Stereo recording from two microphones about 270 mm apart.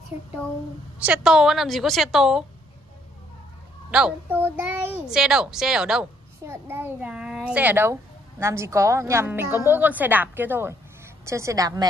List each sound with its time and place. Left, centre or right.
1.0 s a woman's voice: centre
3.9 s a child's voice: centre